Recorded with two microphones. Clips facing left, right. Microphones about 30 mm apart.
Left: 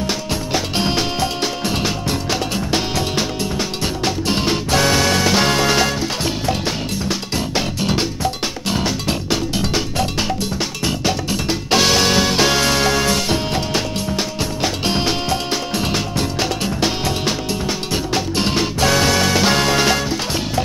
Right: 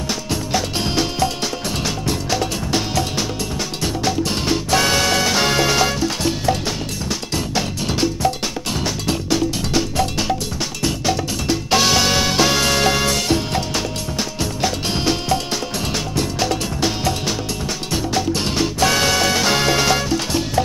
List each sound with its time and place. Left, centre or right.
0.3 s music: centre
6.6 s music: centre
11.7 s music: centre